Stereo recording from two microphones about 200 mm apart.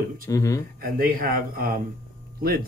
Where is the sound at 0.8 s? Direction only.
45° right (ahead or behind).